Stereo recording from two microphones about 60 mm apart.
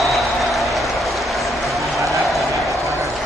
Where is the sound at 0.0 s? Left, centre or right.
Centre.